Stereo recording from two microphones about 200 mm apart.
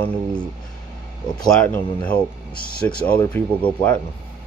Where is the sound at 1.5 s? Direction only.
5° left (ahead or behind).